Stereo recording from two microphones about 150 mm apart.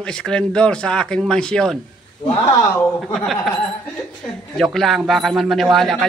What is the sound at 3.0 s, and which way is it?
Speech, centre (ahead or behind).